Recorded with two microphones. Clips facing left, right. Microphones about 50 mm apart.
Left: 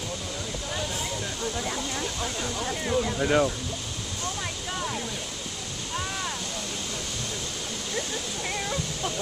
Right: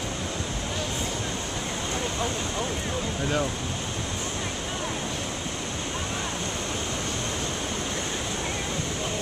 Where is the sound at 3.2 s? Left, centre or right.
Centre.